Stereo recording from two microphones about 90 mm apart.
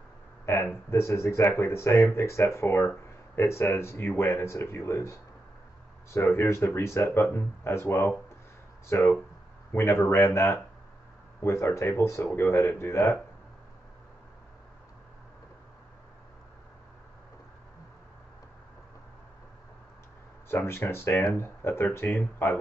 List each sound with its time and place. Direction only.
0.8 s speech: 30° left (ahead or behind)
20.4 s speech: 30° left (ahead or behind)